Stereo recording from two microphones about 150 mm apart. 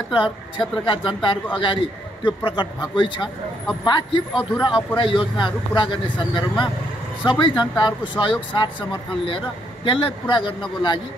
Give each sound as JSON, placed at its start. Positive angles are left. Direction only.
{"t": 0.1, "sound": "a man's voice", "side_deg": 35}
{"t": 9.8, "sound": "a man's voice", "side_deg": 35}